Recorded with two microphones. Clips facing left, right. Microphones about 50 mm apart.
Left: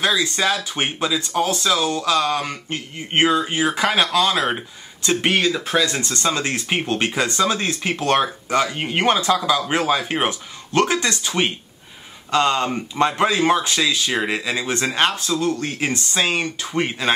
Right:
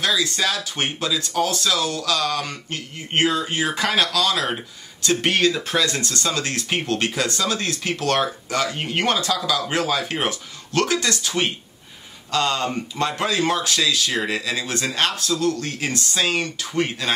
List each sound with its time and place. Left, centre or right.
0.0 s speech: left
3.5 s speech: centre
4.1 s speech: left
5.0 s speech: centre
5.9 s speech: left